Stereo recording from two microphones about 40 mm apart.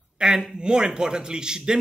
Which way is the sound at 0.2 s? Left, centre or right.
Centre.